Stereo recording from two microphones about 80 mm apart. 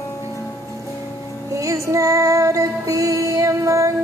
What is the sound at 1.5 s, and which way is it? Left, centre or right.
Music, right.